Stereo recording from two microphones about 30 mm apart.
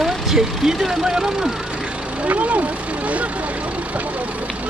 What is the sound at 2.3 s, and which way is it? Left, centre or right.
Speech, right.